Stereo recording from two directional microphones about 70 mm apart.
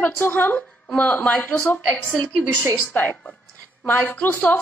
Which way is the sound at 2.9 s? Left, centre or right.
Left.